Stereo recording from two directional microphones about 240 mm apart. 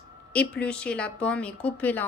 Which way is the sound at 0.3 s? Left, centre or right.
Centre.